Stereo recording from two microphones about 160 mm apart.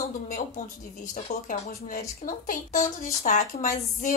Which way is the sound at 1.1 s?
55° left (ahead or behind).